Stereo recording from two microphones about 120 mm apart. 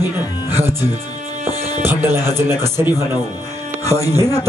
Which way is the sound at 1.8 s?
20° right (ahead or behind).